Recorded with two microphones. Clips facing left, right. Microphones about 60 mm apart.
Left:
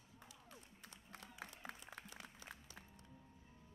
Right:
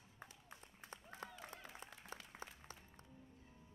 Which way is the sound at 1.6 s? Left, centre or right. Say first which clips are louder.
Left 4 dB; centre.